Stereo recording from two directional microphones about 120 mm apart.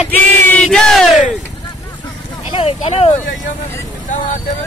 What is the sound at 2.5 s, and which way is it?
Vehicle, 60° left (ahead or behind).